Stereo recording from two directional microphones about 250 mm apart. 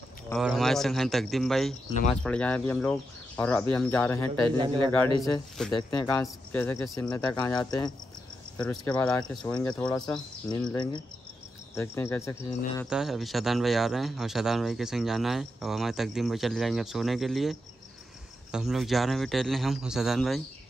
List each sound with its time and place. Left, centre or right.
0.3 s speech: centre
4.6 s a man's voice: centre
5.7 s speech: centre
11.7 s speech: centre
12.9 s speech: centre